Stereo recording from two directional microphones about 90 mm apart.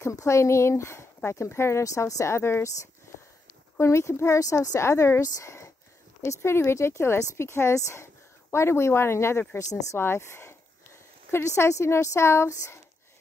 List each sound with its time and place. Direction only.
0.1 s speech: 35° left (ahead or behind)
3.7 s speech: 30° left (ahead or behind)
9.6 s speech: 40° left (ahead or behind)
9.9 s speech: 25° left (ahead or behind)